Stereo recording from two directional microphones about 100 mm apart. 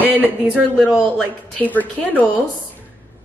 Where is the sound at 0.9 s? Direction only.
15° left (ahead or behind).